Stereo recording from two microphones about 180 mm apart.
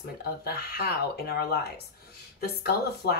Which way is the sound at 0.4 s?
60° left (ahead or behind).